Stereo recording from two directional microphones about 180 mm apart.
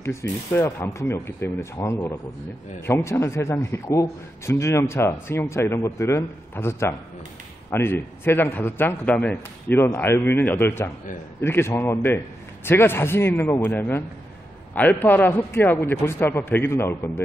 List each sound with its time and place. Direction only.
0.0 s a man's voice: 15° left (ahead or behind)